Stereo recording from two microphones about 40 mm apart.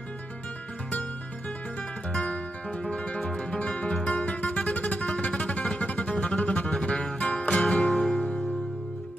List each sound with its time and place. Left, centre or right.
2.1 s music: left; by 3.4 s centre
3.5 s music: left